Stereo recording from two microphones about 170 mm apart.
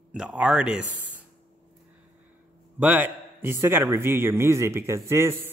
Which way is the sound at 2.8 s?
10° right (ahead or behind).